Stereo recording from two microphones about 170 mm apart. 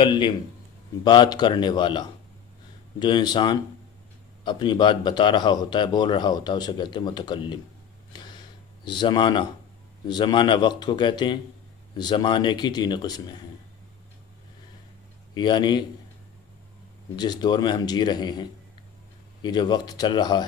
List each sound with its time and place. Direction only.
1.0 s a man's voice: 25° left (ahead or behind)
8.1 s a sound: 25° left (ahead or behind)
8.8 s a man's voice: 25° left (ahead or behind)
15.3 s a man's voice: 25° left (ahead or behind)
17.1 s a man's voice: 25° left (ahead or behind)